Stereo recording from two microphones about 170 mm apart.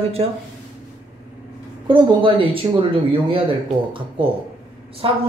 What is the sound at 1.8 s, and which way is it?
A man's voice, 30° right (ahead or behind).